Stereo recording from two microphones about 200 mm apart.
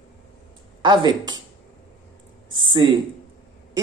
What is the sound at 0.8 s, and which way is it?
Speech, 20° right (ahead or behind).